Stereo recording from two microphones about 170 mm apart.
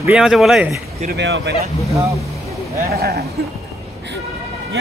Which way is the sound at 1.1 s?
80° right.